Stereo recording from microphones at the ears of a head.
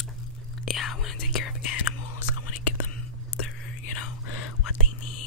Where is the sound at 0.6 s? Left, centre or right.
Left.